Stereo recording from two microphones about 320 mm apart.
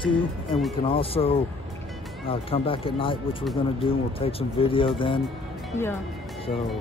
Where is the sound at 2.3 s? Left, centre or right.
Centre.